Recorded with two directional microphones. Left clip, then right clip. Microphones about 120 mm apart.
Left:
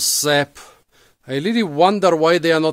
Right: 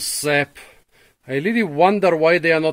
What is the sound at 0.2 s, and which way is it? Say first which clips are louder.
Speech: right 1 dB; 35° left (ahead or behind).